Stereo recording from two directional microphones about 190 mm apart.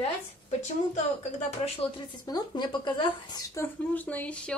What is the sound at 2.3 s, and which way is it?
Speech, 20° left (ahead or behind).